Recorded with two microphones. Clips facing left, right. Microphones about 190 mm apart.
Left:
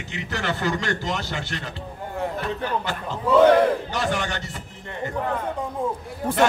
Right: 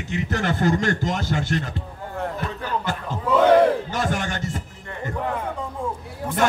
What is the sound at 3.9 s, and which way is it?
Speech, 45° right (ahead or behind).